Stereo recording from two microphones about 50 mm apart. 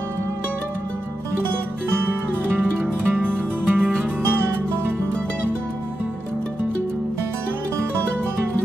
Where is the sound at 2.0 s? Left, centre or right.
Right.